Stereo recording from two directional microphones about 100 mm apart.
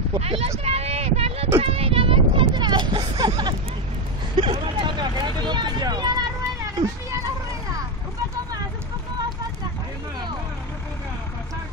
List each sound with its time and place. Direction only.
0.2 s speech: 75° right (ahead or behind)
0.7 s a sound: 90° right; by 3.5 s 45° right (ahead or behind)
4.4 s speech: 55° right (ahead or behind); by 7.2 s 35° right (ahead or behind)